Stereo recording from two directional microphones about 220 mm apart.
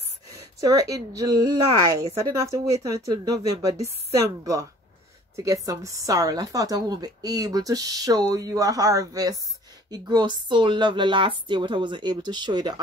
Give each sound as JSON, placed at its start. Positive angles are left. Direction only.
{"t": 0.6, "sound": "speech", "side_deg": -15}